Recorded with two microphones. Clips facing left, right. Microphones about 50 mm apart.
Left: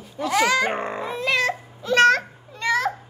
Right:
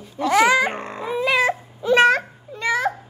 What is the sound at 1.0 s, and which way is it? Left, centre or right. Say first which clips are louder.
Baby cry: right 5 dB; centre.